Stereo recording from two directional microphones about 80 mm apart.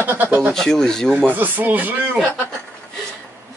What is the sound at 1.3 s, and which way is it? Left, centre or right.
Speech, right.